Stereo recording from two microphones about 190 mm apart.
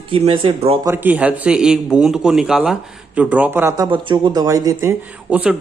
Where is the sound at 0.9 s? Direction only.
10° right (ahead or behind).